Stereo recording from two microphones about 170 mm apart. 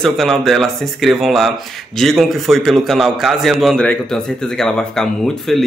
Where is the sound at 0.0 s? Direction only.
Centre (ahead or behind).